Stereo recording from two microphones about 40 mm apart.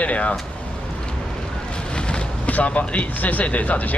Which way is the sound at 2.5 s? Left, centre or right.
Left.